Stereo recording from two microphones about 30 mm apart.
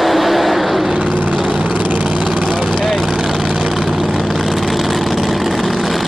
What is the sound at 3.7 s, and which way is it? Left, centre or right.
Vehicle, centre.